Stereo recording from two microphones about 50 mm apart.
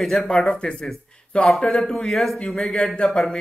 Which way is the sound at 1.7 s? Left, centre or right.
Centre.